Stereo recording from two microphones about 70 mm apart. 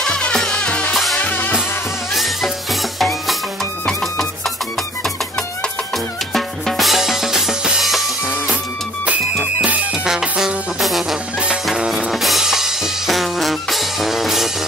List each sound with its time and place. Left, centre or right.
0.0 s music: centre
2.1 s music: centre
6.3 s drum: centre
9.0 s music: right
10.0 s music: centre